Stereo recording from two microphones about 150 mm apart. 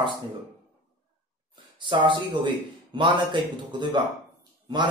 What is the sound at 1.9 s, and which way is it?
Speech, 35° right (ahead or behind).